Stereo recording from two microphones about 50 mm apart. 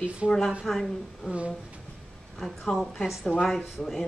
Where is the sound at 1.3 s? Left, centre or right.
Right.